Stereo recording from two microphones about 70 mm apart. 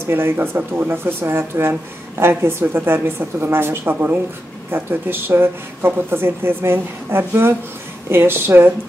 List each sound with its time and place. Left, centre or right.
0.0 s speech: right